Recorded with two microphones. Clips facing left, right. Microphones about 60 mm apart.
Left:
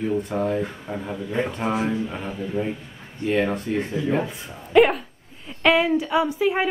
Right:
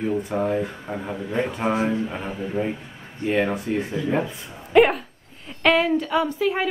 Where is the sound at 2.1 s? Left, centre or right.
Right.